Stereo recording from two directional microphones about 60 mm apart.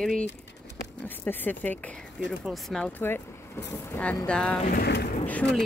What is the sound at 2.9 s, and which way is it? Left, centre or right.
Speech, left.